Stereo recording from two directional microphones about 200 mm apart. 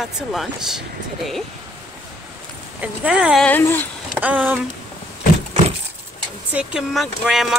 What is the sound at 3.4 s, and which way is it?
Speech, 10° left (ahead or behind).